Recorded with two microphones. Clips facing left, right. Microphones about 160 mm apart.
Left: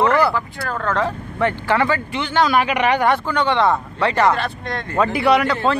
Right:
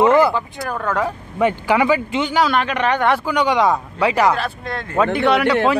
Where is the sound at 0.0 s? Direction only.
20° right (ahead or behind).